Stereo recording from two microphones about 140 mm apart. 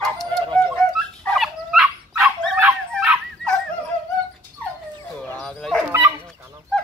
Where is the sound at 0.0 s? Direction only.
5° left (ahead or behind).